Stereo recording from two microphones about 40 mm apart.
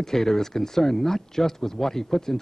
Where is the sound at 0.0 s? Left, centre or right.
Centre.